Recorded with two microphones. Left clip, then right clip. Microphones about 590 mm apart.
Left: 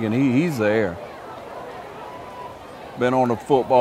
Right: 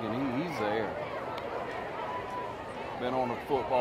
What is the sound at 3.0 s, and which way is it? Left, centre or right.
Speech, left.